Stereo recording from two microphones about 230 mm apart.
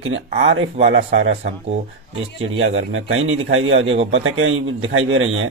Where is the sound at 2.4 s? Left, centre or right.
Right.